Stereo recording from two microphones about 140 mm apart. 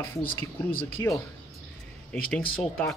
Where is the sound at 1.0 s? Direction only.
20° left (ahead or behind).